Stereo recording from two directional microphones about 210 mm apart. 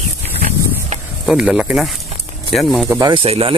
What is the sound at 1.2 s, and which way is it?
Speech, 5° right (ahead or behind).